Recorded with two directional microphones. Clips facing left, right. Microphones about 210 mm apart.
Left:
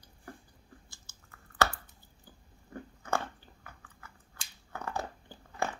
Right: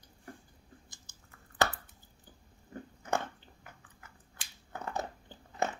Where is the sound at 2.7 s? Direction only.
20° right (ahead or behind).